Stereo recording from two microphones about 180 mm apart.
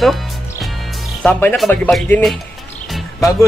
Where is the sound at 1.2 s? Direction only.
10° left (ahead or behind).